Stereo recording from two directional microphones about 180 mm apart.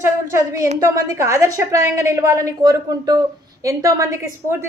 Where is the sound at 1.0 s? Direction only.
15° right (ahead or behind).